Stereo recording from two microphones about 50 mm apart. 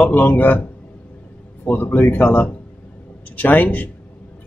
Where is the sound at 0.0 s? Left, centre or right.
Left.